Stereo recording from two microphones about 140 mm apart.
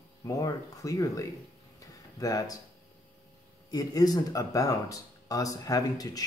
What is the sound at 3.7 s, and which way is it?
Speech, 25° left (ahead or behind).